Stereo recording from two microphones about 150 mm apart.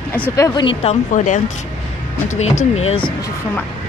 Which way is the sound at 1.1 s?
60° left (ahead or behind).